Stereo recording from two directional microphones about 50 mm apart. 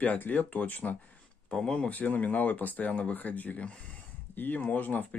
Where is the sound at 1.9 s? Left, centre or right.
Left.